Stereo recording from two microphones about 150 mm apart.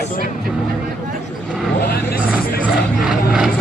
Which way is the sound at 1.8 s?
90° left.